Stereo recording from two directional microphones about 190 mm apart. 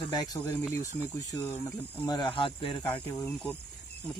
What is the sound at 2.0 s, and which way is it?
Speech, 25° left (ahead or behind).